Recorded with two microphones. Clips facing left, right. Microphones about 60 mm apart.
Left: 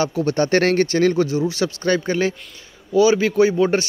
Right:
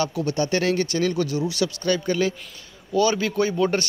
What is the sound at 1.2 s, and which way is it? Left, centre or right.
A man's voice, left.